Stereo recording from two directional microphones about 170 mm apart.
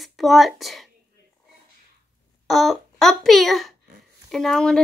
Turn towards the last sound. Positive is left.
turn(degrees=5)  # may be behind; listen again after turning